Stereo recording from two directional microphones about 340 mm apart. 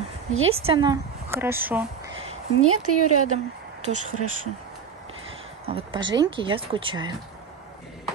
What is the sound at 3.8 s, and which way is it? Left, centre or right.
Speech, right.